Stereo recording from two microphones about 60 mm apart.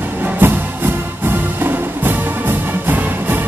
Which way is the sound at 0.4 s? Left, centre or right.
Right.